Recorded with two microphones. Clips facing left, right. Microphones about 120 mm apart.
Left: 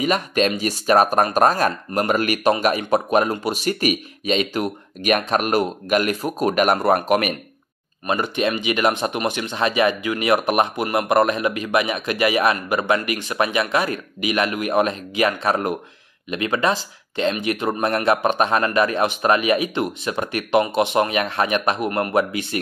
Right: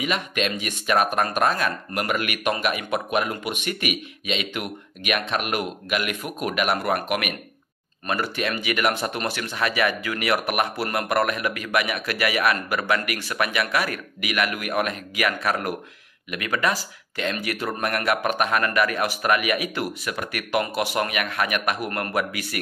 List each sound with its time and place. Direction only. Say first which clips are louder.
0.0 s a man's voice: left 6 dB; 40° left (ahead or behind)
8.1 s speech: left 5 dB; 25° left (ahead or behind)